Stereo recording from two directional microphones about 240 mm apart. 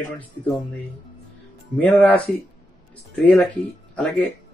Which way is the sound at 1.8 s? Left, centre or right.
Centre.